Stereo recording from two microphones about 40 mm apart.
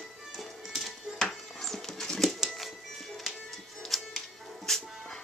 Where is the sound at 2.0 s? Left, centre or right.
Centre.